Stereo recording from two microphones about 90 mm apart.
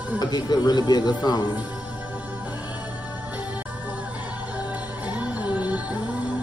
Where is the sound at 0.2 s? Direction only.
50° left (ahead or behind).